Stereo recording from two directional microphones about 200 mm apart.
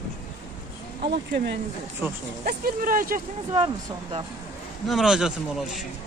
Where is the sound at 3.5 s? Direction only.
25° right (ahead or behind).